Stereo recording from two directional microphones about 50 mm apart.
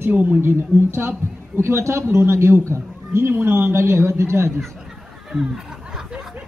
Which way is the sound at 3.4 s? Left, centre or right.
Right.